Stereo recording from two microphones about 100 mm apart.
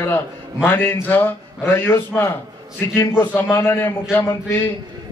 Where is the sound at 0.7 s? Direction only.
25° left (ahead or behind).